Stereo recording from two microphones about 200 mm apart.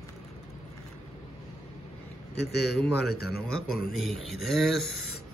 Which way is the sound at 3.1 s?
50° left (ahead or behind).